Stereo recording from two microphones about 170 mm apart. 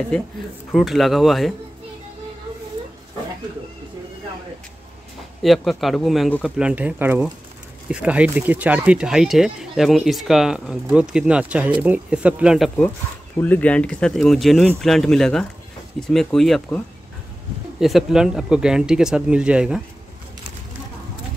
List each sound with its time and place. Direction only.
0.7 s speech: centre (ahead or behind)
5.4 s speech: centre (ahead or behind)